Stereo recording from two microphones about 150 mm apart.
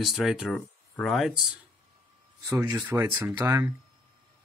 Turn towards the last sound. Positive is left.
turn(degrees=-15)  # may be behind; listen again after turning